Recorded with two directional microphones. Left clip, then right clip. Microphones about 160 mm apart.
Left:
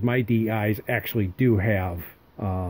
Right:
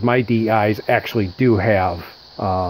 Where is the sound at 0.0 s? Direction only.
35° left (ahead or behind).